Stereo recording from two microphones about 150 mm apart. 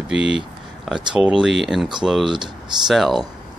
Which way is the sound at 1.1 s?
5° right (ahead or behind).